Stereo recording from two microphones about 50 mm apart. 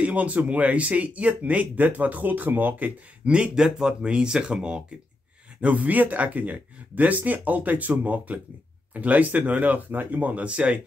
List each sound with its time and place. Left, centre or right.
0.0 s speech: right
3.5 s speech: centre
5.6 s speech: right